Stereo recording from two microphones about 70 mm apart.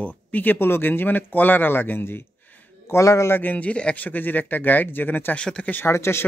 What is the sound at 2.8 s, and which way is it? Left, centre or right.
Speech, left.